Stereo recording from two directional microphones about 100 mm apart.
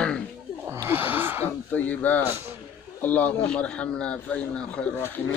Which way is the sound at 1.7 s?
15° left (ahead or behind).